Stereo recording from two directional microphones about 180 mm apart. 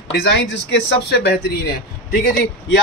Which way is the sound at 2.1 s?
60° left (ahead or behind).